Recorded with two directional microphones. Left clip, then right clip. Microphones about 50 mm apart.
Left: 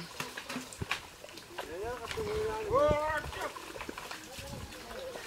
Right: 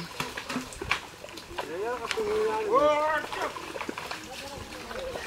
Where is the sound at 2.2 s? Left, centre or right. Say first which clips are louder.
Right 7 dB; centre.